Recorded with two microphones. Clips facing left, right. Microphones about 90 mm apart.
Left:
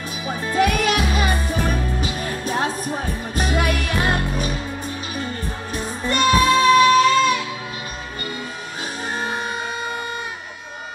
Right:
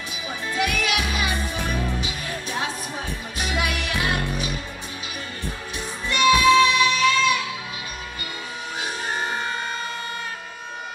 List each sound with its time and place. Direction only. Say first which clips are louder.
0.3 s music: left 6 dB; 40° left (ahead or behind)
6.0 s child singing: even; 40° left (ahead or behind)